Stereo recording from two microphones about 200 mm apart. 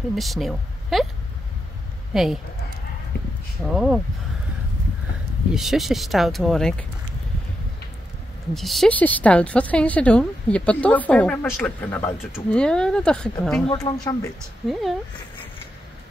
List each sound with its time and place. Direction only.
0.1 s speech: centre (ahead or behind)
2.1 s speech: centre (ahead or behind)
3.1 s a sound: 65° left (ahead or behind)
3.6 s speech: 5° right (ahead or behind)
5.5 s speech: centre (ahead or behind)
8.5 s speech: centre (ahead or behind)
13.7 s speech: 25° left (ahead or behind)
14.7 s speech: centre (ahead or behind)